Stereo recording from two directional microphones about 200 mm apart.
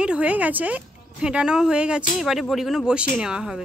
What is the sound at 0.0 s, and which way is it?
A woman's voice, 5° right (ahead or behind).